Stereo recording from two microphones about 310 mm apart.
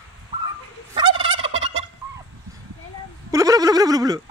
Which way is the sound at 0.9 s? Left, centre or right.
Centre.